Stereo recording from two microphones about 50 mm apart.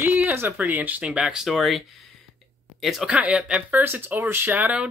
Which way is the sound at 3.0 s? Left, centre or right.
Right.